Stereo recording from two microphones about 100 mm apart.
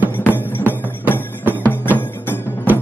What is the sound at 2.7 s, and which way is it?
Music, 20° right (ahead or behind).